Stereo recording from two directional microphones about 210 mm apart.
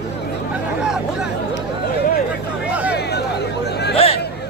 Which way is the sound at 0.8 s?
5° right (ahead or behind).